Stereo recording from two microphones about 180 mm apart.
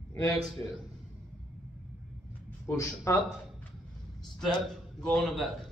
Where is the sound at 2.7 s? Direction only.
15° left (ahead or behind).